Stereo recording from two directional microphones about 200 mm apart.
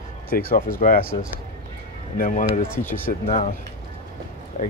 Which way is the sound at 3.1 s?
40° left (ahead or behind).